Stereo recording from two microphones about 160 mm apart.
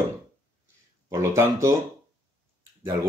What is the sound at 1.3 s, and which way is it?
Speech, 20° right (ahead or behind).